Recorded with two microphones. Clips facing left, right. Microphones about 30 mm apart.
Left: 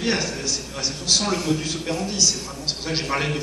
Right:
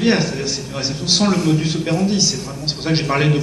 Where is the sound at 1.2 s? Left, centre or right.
Centre.